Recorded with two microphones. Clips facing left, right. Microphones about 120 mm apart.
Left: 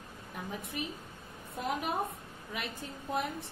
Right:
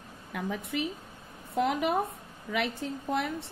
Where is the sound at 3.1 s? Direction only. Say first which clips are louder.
Right 3 dB; 75° right (ahead or behind).